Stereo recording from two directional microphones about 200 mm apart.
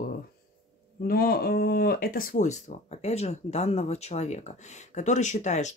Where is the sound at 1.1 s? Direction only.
50° left (ahead or behind).